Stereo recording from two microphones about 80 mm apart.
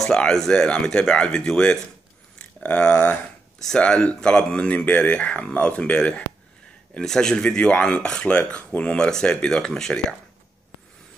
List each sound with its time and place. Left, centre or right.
0.0 s speech: centre